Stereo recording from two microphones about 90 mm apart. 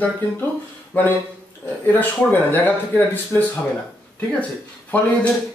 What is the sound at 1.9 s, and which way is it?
Speech, 20° left (ahead or behind).